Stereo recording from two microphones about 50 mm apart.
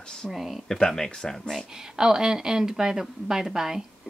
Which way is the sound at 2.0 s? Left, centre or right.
Centre.